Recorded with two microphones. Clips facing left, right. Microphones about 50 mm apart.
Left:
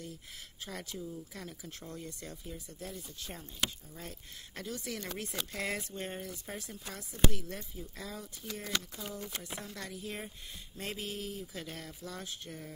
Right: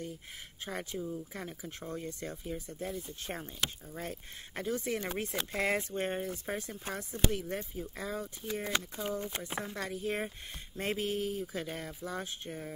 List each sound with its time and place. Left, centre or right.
0.7 s speech: right